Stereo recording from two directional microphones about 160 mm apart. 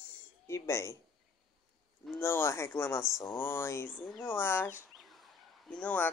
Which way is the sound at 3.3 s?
15° left (ahead or behind).